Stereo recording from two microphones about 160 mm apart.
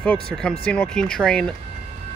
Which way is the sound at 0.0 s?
5° left (ahead or behind).